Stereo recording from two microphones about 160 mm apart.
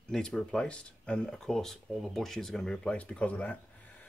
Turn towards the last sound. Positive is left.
turn(degrees=5)  # may be behind; listen again after turning